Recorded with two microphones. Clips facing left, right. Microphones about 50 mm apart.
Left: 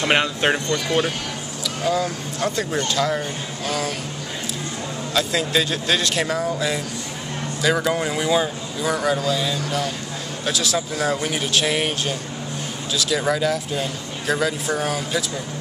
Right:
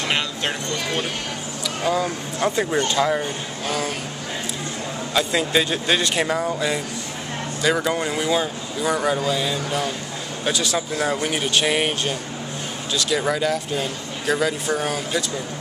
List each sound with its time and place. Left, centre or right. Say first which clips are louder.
0.1 s speech: left 7 dB; left
1.9 s speech: even; centre
5.1 s speech: right 1 dB; centre